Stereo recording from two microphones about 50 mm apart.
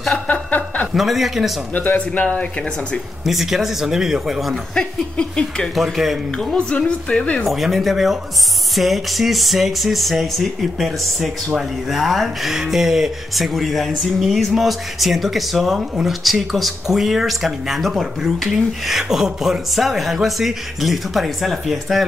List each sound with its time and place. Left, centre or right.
0.3 s a sound: left
0.9 s speech: centre
1.7 s speech: left
3.3 s speech: centre
4.7 s a sound: centre
5.8 s speech: centre
6.5 s music: centre
7.1 s a sound: centre
7.4 s speech: centre